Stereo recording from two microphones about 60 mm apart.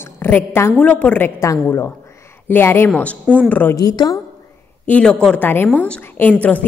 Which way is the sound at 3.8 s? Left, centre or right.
Left.